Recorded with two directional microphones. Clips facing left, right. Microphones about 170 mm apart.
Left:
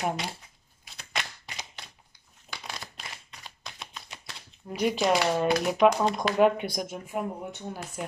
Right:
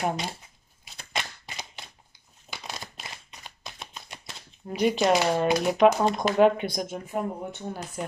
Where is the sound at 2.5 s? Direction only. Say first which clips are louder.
Right 1 dB; 25° right (ahead or behind).